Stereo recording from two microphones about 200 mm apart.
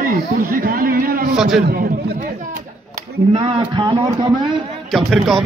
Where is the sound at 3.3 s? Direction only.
25° right (ahead or behind).